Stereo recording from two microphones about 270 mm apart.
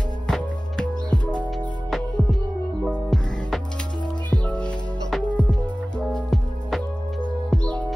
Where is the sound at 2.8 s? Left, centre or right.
Centre.